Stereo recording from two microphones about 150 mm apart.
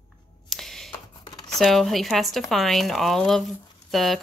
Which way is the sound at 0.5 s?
Centre (ahead or behind).